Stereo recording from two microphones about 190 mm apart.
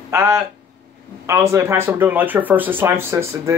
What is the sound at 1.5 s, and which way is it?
Speech, 15° right (ahead or behind).